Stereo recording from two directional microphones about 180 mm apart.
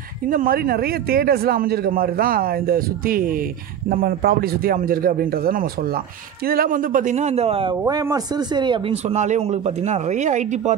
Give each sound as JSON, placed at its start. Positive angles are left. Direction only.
{"t": 0.3, "sound": "a man's voice", "side_deg": -55}
{"t": 7.8, "sound": "speech", "side_deg": -20}
{"t": 9.1, "sound": "speech", "side_deg": -40}